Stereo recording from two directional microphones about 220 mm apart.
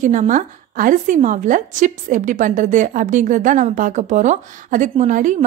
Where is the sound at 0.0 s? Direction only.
35° right (ahead or behind).